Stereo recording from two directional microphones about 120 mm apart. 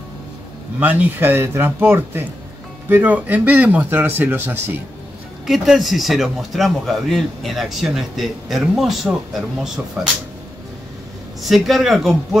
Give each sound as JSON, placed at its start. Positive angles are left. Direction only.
{"t": 0.7, "sound": "speech", "side_deg": -15}
{"t": 5.5, "sound": "speech", "side_deg": 0}
{"t": 11.4, "sound": "speech", "side_deg": 0}